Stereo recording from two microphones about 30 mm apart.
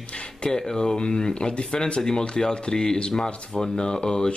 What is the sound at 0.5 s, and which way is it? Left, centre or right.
Speech, left.